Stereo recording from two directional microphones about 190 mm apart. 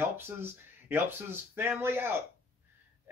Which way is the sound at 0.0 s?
10° right (ahead or behind).